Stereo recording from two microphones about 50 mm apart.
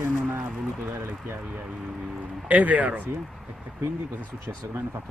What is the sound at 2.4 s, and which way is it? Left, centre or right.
Speech, right.